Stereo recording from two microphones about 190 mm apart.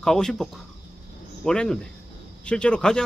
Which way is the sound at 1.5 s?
5° left (ahead or behind).